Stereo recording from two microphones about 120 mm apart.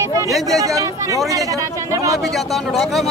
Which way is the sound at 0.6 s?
30° right (ahead or behind).